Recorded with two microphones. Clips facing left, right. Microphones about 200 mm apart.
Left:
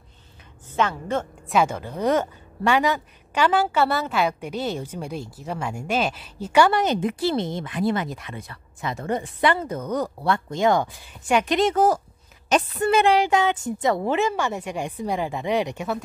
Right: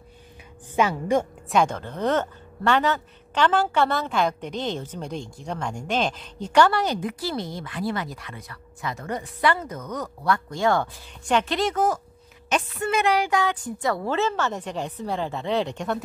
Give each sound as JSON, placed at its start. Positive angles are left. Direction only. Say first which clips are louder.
{"t": 0.7, "sound": "a woman's voice", "louder": "right 2 dB", "side_deg": -10}
{"t": 1.5, "sound": "a woman's voice", "louder": "left 1 dB", "side_deg": 5}
{"t": 6.7, "sound": "speech", "louder": "left 3 dB", "side_deg": 20}
{"t": 11.7, "sound": "a woman's voice", "louder": "left 4 dB", "side_deg": 35}